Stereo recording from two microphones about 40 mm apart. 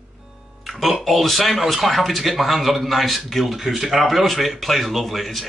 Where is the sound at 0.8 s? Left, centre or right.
Centre.